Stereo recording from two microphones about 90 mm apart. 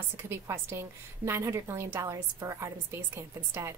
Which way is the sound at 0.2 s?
30° right (ahead or behind).